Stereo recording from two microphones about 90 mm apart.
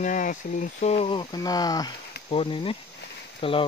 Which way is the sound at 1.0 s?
90° left.